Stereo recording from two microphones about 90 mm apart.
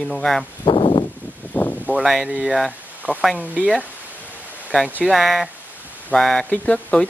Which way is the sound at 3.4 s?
15° right (ahead or behind).